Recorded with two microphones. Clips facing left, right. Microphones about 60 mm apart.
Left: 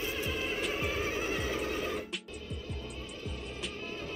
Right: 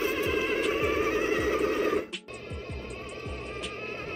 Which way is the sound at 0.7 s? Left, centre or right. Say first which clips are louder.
Right 7 dB; right.